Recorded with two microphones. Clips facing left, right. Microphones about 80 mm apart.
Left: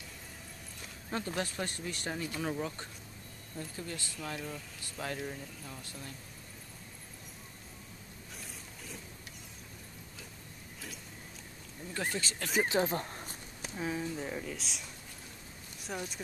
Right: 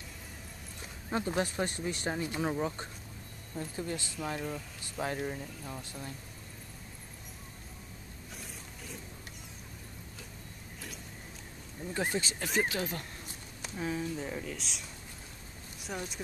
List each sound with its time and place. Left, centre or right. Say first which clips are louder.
1.1 s speech: right 4 dB; centre
11.9 s speech: right 3 dB; centre
12.6 s speech: left 4 dB; left
13.7 s speech: right 1 dB; centre